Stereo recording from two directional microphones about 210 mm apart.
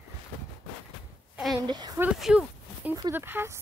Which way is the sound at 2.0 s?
5° right (ahead or behind).